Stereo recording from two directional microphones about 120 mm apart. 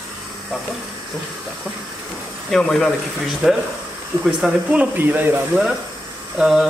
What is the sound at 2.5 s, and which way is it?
Speech, 5° left (ahead or behind).